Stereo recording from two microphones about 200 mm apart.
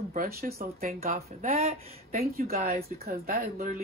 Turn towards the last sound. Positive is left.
turn(degrees=-40)  # may be behind; listen again after turning